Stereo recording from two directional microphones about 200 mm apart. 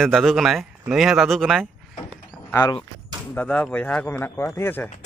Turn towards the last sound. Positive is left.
turn(degrees=10)  # may be behind; listen again after turning